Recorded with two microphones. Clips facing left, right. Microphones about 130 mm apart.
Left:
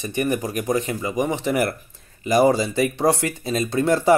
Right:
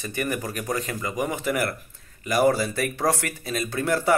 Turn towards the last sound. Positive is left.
turn(degrees=30)  # may be behind; listen again after turning